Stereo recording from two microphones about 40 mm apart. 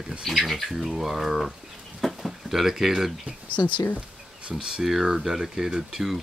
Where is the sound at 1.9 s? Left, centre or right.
Centre.